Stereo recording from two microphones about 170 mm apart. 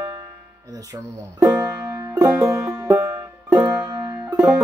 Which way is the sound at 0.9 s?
15° right (ahead or behind).